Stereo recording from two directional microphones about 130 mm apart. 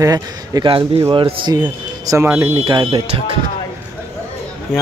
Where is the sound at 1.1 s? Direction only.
40° right (ahead or behind).